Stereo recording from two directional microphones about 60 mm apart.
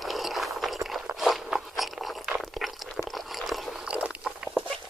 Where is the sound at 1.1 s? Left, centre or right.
Centre.